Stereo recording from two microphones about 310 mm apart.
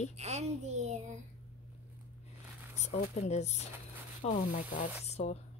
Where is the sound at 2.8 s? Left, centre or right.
Left.